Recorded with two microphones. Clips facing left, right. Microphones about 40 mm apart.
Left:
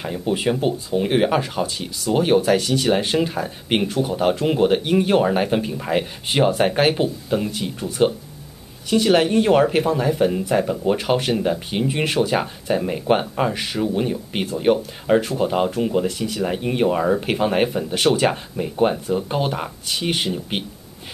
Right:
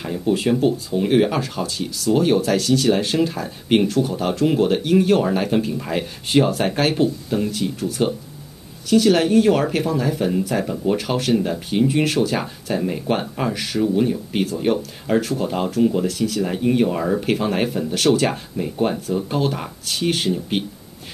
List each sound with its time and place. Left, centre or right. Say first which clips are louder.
0.0 s speech: right 1 dB; centre